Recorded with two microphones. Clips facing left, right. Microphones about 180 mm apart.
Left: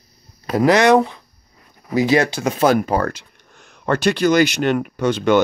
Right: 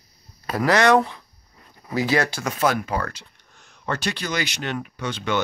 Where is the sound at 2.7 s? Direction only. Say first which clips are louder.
Left 8 dB; 40° left (ahead or behind).